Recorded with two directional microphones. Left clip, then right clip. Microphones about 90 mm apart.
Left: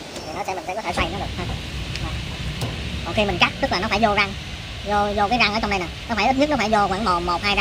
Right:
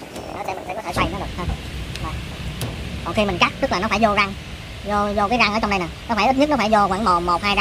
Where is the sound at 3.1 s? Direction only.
90° right.